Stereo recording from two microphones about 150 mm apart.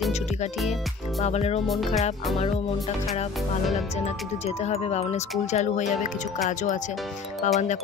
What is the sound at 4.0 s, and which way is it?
Speech, 45° left (ahead or behind).